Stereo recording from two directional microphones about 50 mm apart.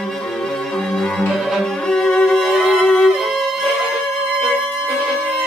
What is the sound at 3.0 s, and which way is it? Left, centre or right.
Music, centre.